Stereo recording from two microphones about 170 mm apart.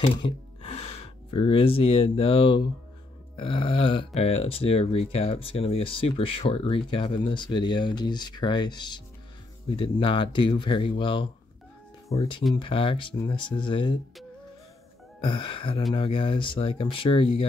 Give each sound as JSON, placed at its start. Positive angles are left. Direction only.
{"t": 0.0, "sound": "speech", "side_deg": 30}
{"t": 15.1, "sound": "speech", "side_deg": 30}